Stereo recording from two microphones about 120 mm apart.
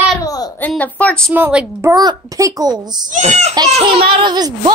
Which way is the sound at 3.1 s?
80° right.